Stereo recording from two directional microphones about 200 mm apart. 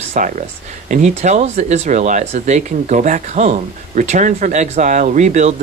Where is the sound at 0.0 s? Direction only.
35° right (ahead or behind).